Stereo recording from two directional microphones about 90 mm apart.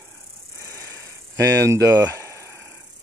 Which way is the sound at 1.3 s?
35° right (ahead or behind).